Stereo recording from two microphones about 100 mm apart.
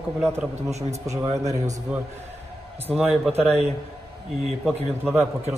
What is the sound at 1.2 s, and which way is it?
Speech, 35° right (ahead or behind).